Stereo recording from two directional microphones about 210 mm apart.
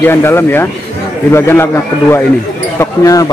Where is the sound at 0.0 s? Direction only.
10° left (ahead or behind).